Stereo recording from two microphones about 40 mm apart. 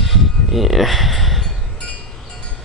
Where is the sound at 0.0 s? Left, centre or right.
Centre.